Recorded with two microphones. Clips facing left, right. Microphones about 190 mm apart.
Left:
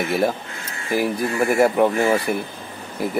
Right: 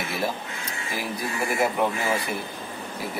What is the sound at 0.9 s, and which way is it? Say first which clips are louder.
Speech: left 10 dB; 50° left (ahead or behind).